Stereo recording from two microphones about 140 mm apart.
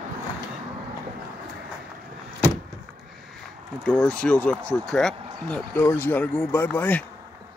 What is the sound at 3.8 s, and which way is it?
Speech, 5° left (ahead or behind).